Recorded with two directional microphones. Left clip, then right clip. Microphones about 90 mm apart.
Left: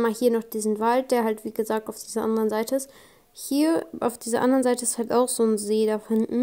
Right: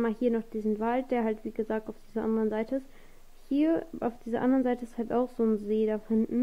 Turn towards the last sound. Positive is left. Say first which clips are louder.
# left 5 dB
turn(degrees=25)  # may be behind; listen again after turning